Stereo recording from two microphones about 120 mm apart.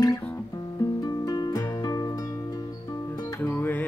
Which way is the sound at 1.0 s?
35° left (ahead or behind).